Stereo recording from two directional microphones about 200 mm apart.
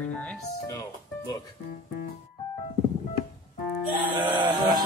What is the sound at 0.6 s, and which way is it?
Speech, 20° left (ahead or behind).